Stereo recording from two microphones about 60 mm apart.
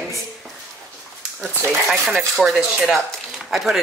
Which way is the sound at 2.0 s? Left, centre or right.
Centre.